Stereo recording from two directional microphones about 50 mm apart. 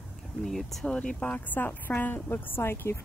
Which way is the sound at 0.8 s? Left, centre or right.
Centre.